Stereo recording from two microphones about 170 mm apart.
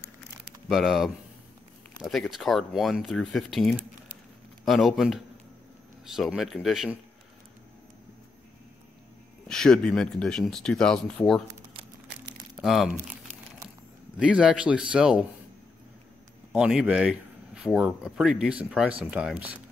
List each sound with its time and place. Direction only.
0.7 s speech: centre (ahead or behind)
9.5 s speech: 5° left (ahead or behind)
12.5 s speech: centre (ahead or behind)
14.1 s speech: 5° right (ahead or behind)
16.5 s speech: 5° right (ahead or behind)